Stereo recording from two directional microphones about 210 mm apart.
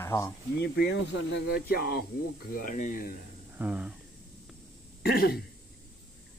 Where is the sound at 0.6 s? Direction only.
55° left (ahead or behind).